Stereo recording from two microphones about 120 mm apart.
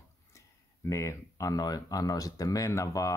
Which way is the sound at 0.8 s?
25° left (ahead or behind).